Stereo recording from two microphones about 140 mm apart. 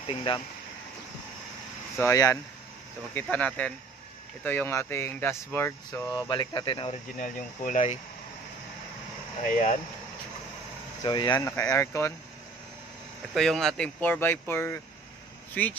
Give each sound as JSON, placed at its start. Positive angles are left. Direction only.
{"t": 0.0, "sound": "speech", "side_deg": 35}
{"t": 2.0, "sound": "speech", "side_deg": 25}
{"t": 3.2, "sound": "speech", "side_deg": 10}
{"t": 6.1, "sound": "speech", "side_deg": 30}
{"t": 6.9, "sound": "speech", "side_deg": 65}
{"t": 9.4, "sound": "speech", "side_deg": 70}
{"t": 11.1, "sound": "speech", "side_deg": 35}
{"t": 11.3, "sound": "speech", "side_deg": 20}
{"t": 13.3, "sound": "speech", "side_deg": 0}
{"t": 14.0, "sound": "speech", "side_deg": 15}